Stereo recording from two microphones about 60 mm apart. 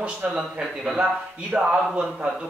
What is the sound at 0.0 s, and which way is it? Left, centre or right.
A man's voice, centre.